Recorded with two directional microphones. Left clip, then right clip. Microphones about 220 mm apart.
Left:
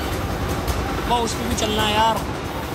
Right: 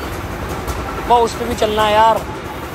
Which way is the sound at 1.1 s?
10° left (ahead or behind).